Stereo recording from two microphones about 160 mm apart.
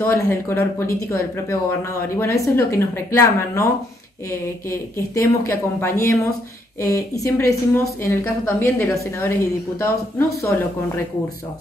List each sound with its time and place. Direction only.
0.0 s speech: 15° left (ahead or behind)
4.6 s speech: 15° left (ahead or behind)